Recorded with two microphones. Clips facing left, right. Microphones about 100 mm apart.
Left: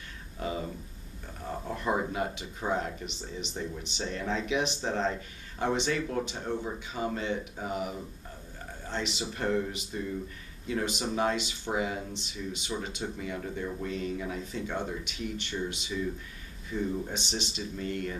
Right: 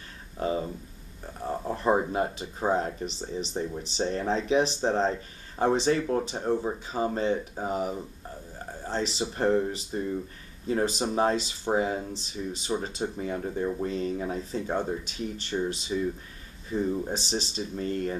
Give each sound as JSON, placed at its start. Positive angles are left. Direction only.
{"t": 0.4, "sound": "speech", "side_deg": -30}